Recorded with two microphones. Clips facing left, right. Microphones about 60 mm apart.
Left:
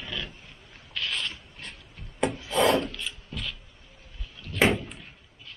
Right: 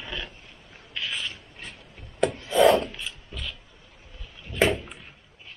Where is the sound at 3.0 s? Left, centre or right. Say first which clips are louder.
Left 1 dB; centre.